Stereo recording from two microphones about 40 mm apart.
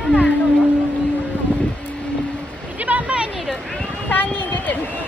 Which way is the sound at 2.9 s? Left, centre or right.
Right.